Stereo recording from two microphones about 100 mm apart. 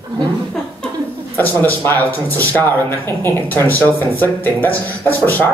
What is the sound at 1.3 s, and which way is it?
A man's voice, 20° left (ahead or behind).